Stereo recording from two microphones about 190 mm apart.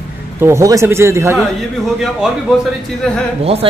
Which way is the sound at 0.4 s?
15° right (ahead or behind).